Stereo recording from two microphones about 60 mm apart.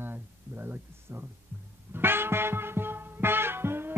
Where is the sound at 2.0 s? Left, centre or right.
Right.